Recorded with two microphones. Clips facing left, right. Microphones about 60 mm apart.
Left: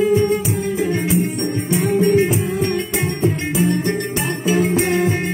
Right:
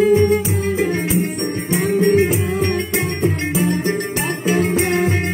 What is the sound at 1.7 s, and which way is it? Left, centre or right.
Music, right.